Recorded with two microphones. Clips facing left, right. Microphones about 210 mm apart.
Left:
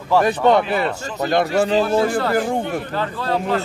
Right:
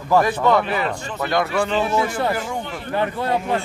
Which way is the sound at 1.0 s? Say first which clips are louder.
Left 3 dB; 40° left (ahead or behind).